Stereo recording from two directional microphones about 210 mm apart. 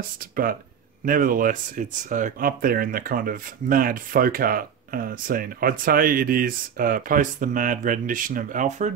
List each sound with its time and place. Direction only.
1.0 s speech: 40° right (ahead or behind)